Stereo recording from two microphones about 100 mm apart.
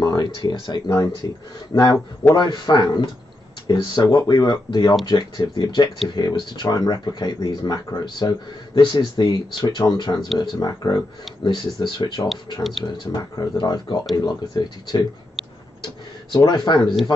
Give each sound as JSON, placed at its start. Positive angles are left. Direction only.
{"t": 0.0, "sound": "speech", "side_deg": 45}
{"t": 0.8, "sound": "speech", "side_deg": 20}
{"t": 1.7, "sound": "speech", "side_deg": 55}
{"t": 10.2, "sound": "speech", "side_deg": 0}
{"t": 10.6, "sound": "speech", "side_deg": 40}
{"t": 12.6, "sound": "speech", "side_deg": 0}
{"t": 13.6, "sound": "speech", "side_deg": 45}
{"t": 15.8, "sound": "a sound", "side_deg": 50}